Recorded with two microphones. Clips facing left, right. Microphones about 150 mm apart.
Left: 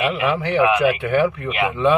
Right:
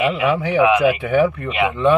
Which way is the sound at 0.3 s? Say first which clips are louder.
Right 2 dB; centre (ahead or behind).